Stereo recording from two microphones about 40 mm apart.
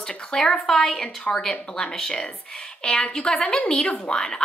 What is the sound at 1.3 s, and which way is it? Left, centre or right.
A woman's voice, left.